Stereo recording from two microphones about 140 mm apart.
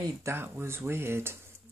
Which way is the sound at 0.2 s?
15° right (ahead or behind).